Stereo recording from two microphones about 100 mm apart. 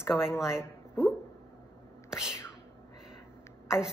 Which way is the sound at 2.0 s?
5° right (ahead or behind).